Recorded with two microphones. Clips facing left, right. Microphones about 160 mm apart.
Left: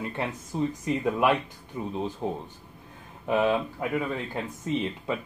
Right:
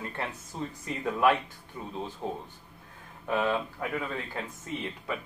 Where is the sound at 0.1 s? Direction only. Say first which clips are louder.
Left 5 dB; 15° left (ahead or behind).